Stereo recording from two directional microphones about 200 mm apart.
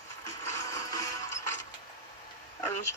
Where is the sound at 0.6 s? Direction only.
15° left (ahead or behind).